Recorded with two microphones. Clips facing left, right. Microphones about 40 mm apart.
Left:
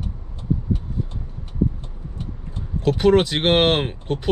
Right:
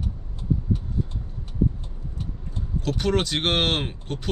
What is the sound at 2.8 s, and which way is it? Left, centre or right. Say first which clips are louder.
Speech: left 8 dB; left.